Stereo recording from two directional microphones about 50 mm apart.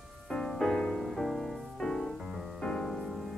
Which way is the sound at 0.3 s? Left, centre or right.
Centre.